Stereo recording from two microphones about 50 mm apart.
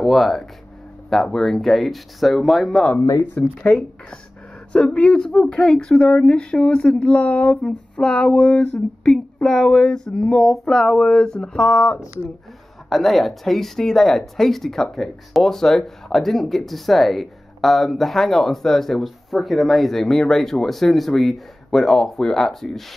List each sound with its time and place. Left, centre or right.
0.0 s speech: centre
3.7 s speech: left
4.7 s speech: centre
7.6 s a sound: centre
12.9 s speech: centre